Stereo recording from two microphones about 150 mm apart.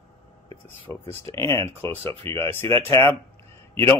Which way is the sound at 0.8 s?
15° left (ahead or behind).